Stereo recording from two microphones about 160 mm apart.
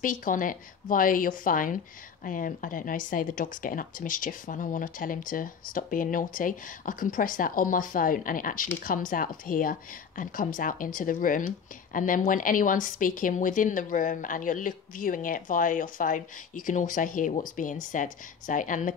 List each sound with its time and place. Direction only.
0.0 s speech: 55° left (ahead or behind)